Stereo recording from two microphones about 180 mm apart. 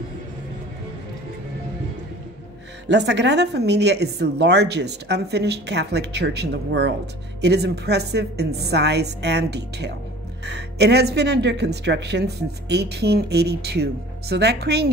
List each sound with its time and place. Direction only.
2.9 s speech: 70° right (ahead or behind)